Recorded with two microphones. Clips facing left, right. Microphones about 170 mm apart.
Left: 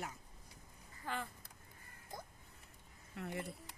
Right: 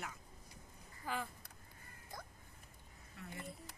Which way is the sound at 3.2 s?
70° left (ahead or behind).